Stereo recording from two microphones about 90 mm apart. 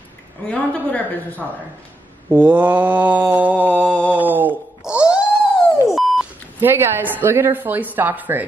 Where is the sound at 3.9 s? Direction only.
15° left (ahead or behind).